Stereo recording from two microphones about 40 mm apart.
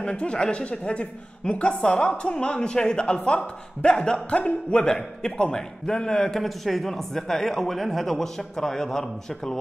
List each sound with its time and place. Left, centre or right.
0.0 s a woman's voice: left
4.4 s speech: left
4.8 s a woman's voice: centre
6.2 s speech: centre